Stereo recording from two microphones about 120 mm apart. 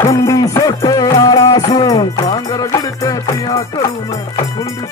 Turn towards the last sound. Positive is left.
turn(degrees=30)  # may be behind; listen again after turning